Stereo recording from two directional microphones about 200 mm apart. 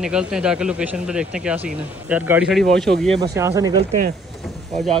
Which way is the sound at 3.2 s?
15° right (ahead or behind).